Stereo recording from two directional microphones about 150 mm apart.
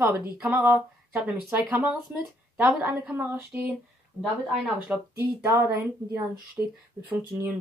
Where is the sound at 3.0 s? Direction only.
10° right (ahead or behind).